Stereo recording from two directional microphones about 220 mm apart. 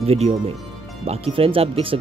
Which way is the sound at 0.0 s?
30° right (ahead or behind).